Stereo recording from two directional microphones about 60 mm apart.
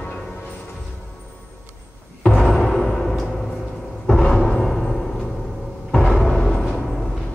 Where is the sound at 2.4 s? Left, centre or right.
Centre.